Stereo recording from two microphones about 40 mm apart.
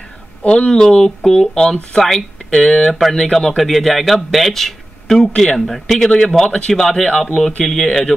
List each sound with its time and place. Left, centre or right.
0.5 s speech: centre
2.9 s a man's voice: centre